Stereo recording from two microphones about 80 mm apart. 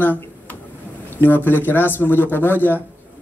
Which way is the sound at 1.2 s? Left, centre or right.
Left.